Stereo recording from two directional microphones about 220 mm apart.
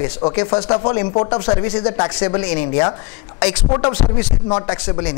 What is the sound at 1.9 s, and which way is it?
Speech, 20° left (ahead or behind).